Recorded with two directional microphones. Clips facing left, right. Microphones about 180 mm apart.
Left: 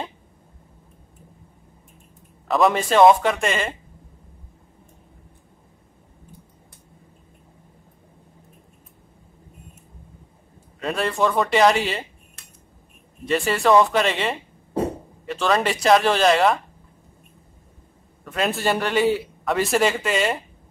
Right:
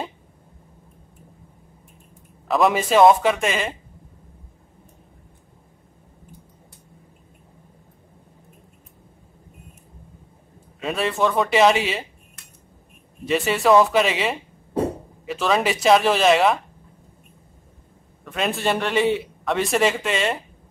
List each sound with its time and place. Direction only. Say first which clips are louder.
2.4 s a man's voice: even; centre (ahead or behind)
10.8 s a man's voice: even; centre (ahead or behind)
13.2 s a man's voice: even; centre (ahead or behind)
18.2 s a man's voice: left 1 dB; centre (ahead or behind)